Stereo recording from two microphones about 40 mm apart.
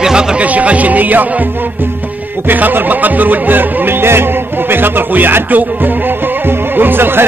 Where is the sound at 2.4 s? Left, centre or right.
Right.